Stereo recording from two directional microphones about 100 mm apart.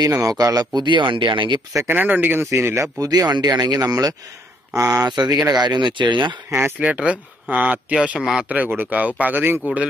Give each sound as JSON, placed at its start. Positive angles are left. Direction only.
{"t": 0.0, "sound": "speech", "side_deg": -35}
{"t": 0.8, "sound": "speech", "side_deg": -55}
{"t": 1.7, "sound": "speech", "side_deg": -30}
{"t": 2.0, "sound": "speech", "side_deg": -20}
{"t": 6.8, "sound": "speech", "side_deg": -10}